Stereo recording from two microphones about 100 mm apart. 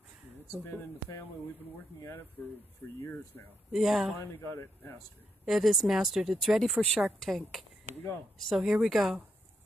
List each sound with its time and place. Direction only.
2.8 s speech: 20° left (ahead or behind)
3.7 s speech: centre (ahead or behind)
4.2 s speech: 25° left (ahead or behind)
5.4 s speech: centre (ahead or behind)